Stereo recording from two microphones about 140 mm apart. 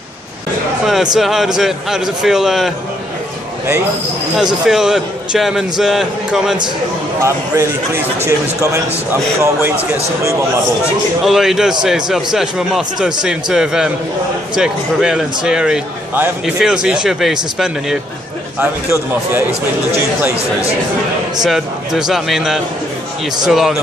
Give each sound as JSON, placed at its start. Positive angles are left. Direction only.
{"t": 1.1, "sound": "a man's voice", "side_deg": 0}
{"t": 4.6, "sound": "a man's voice", "side_deg": -5}
{"t": 7.2, "sound": "speech", "side_deg": -20}
{"t": 9.1, "sound": "speech", "side_deg": -20}
{"t": 11.2, "sound": "a man's voice", "side_deg": -5}
{"t": 18.6, "sound": "a man's voice", "side_deg": -15}
{"t": 21.5, "sound": "a man's voice", "side_deg": -5}